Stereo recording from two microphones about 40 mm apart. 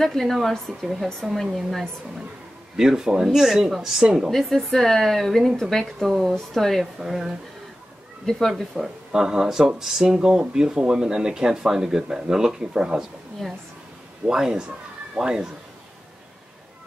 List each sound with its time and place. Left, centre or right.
0.0 s speech: centre
2.8 s speech: centre
4.3 s speech: centre
7.1 s speech: centre
8.3 s speech: centre
9.1 s speech: centre
14.2 s speech: centre
14.7 s children playing: right